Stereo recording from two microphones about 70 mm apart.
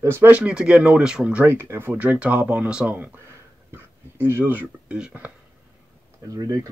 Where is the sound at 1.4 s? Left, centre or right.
Right.